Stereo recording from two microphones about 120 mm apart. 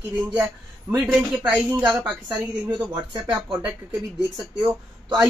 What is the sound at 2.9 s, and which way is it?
Speech, 40° right (ahead or behind).